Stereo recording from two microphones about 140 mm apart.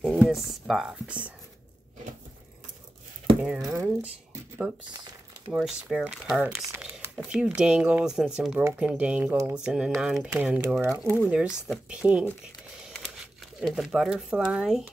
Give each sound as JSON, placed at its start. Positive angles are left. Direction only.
{"t": 0.0, "sound": "speech", "side_deg": 0}
{"t": 3.3, "sound": "speech", "side_deg": -10}
{"t": 5.5, "sound": "speech", "side_deg": -5}
{"t": 6.7, "sound": "crumpling", "side_deg": -15}
{"t": 7.2, "sound": "speech", "side_deg": -5}
{"t": 11.2, "sound": "speech", "side_deg": -5}